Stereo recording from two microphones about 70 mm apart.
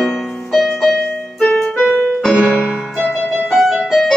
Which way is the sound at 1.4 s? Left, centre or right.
Centre.